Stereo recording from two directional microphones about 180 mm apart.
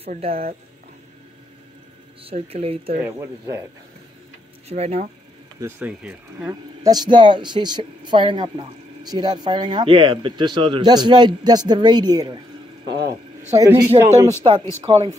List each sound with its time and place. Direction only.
0.0 s speech: 35° right (ahead or behind)
2.2 s speech: 35° right (ahead or behind)
3.0 s speech: 15° right (ahead or behind)
4.6 s speech: 35° right (ahead or behind)
5.6 s speech: 10° right (ahead or behind)
6.5 s speech: 20° right (ahead or behind)
12.8 s speech: 70° right (ahead or behind)
13.6 s speech: 20° right (ahead or behind)
14.4 s speech: 30° right (ahead or behind)